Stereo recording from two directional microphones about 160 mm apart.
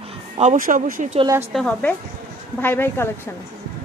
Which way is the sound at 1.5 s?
5° left (ahead or behind).